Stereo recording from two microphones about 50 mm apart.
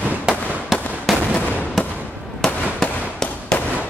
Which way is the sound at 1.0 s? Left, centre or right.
Centre.